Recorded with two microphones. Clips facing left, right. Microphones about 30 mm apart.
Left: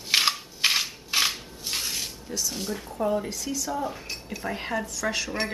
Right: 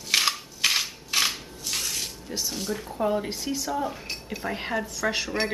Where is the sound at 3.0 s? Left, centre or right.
Centre.